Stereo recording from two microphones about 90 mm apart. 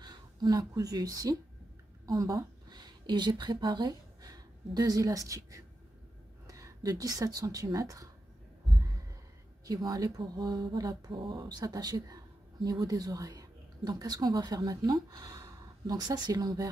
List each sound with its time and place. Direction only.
0.0 s speech: 50° right (ahead or behind); by 2.4 s 35° right (ahead or behind)
2.7 s speech: 55° right (ahead or behind)
9.7 s a woman's voice: 45° right (ahead or behind)